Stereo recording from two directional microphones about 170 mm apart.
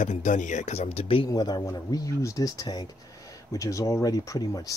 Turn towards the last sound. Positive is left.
turn(degrees=20)  # may be behind; listen again after turning